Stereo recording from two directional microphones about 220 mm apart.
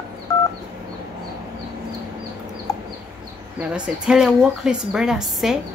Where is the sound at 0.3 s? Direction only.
15° left (ahead or behind).